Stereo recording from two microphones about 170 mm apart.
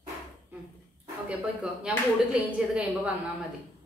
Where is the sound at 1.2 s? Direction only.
5° right (ahead or behind).